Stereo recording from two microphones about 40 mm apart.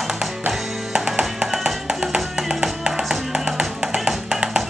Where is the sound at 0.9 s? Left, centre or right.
Centre.